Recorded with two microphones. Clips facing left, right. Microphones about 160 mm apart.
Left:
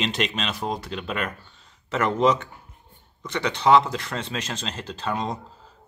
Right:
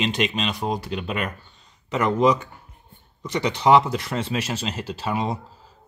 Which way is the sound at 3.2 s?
10° right (ahead or behind).